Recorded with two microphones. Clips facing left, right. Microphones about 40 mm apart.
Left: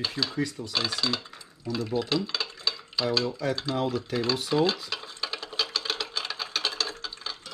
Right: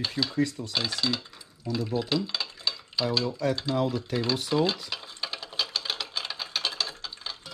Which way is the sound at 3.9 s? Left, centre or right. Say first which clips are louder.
Left 1 dB; centre.